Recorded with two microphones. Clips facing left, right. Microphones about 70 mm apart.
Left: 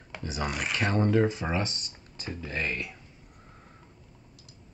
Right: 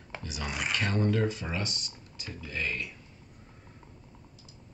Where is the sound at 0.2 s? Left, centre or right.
Left.